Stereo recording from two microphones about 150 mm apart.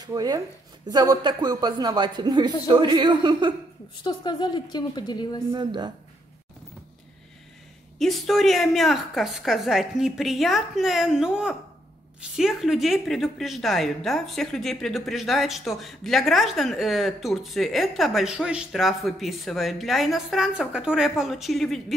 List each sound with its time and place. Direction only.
0.0 s speech: 25° right (ahead or behind)
4.0 s a woman's voice: 30° left (ahead or behind)
5.5 s speech: 30° right (ahead or behind)
8.0 s a woman's voice: centre (ahead or behind)